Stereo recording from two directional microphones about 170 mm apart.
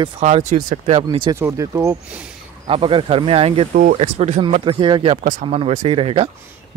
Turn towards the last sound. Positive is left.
turn(degrees=-35)  # may be behind; listen again after turning